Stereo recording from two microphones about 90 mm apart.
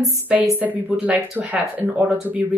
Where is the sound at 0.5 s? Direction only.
20° right (ahead or behind).